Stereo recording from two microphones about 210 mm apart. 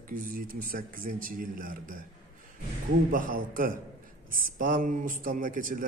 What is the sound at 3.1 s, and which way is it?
A man's voice, 40° right (ahead or behind).